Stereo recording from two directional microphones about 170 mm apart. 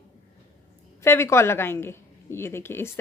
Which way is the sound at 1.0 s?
15° left (ahead or behind).